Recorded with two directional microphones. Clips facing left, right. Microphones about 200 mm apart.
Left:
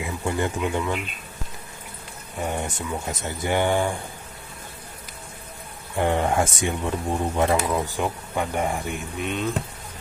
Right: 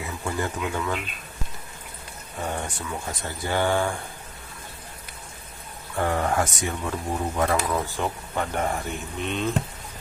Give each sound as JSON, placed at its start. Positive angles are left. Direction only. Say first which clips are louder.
{"t": 0.0, "sound": "speech", "louder": "left 3 dB", "side_deg": 20}
{"t": 2.4, "sound": "speech", "louder": "left 3 dB", "side_deg": 20}
{"t": 5.9, "sound": "speech", "louder": "left 2 dB", "side_deg": 20}